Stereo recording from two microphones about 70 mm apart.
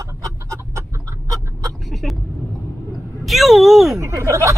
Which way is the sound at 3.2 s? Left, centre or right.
Centre.